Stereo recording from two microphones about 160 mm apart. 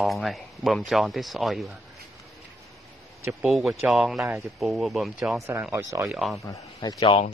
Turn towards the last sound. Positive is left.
turn(degrees=35)  # may be behind; listen again after turning